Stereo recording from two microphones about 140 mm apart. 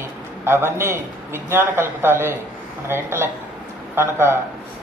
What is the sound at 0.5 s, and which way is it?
A man's voice, 15° right (ahead or behind).